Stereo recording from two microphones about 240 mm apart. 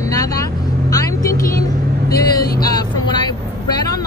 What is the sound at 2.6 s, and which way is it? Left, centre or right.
Speech, centre.